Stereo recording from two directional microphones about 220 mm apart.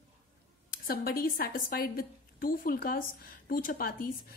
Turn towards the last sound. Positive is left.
turn(degrees=40)  # may be behind; listen again after turning